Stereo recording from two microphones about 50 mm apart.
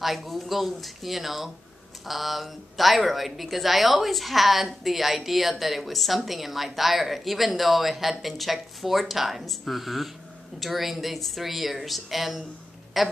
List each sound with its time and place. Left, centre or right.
0.0 s a woman's voice: centre